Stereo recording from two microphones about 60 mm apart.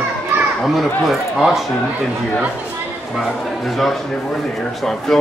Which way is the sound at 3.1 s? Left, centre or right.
Centre.